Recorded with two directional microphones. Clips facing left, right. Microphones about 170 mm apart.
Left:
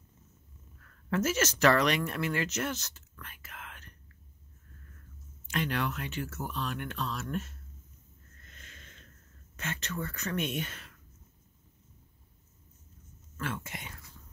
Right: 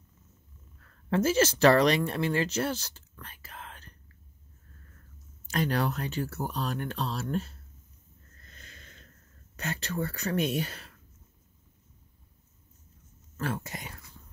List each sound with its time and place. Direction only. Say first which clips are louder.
0.8 s speech: right 4 dB; 30° right (ahead or behind)
5.5 s speech: right 4 dB; 35° right (ahead or behind)
8.4 s sniff: right 1 dB; 35° right (ahead or behind)
9.6 s speech: right 4 dB; 35° right (ahead or behind)
13.4 s speech: right 4 dB; 40° right (ahead or behind)